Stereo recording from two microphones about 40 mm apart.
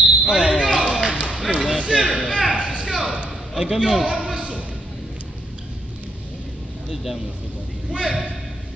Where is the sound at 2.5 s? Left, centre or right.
Right.